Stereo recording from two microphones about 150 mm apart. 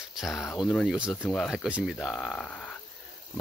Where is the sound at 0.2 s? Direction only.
Centre (ahead or behind).